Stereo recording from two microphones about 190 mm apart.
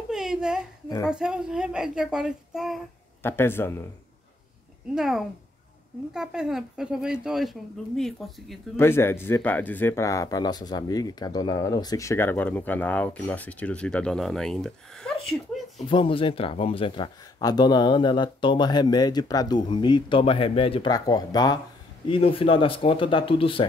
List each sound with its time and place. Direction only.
0.1 s a sound: centre (ahead or behind)
1.0 s speech: 5° right (ahead or behind)
3.2 s speech: 10° left (ahead or behind)
4.9 s speech: 5° right (ahead or behind)
8.7 s speech: 10° left (ahead or behind)
15.9 s speech: 30° left (ahead or behind)